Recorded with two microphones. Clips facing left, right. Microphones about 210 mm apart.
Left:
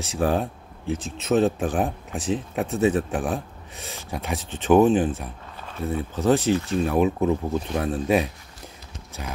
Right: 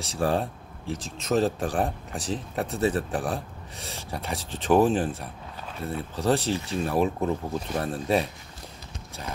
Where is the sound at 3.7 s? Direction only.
30° right (ahead or behind).